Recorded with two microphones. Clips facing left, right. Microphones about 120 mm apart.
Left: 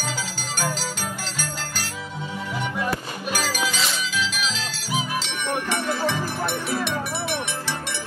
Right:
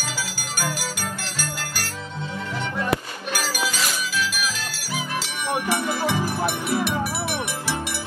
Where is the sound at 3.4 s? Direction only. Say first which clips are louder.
Even; 10° right (ahead or behind).